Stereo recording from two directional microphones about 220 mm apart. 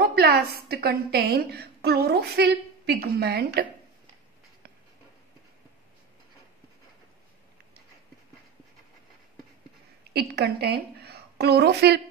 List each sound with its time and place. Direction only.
0.0 s a woman's voice: 45° right (ahead or behind)
10.1 s a woman's voice: 50° right (ahead or behind)